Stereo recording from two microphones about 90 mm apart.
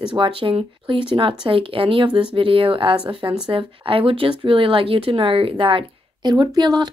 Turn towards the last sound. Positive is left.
turn(degrees=-50)  # may be behind; listen again after turning